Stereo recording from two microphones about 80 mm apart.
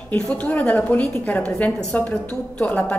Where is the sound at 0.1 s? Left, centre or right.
Centre.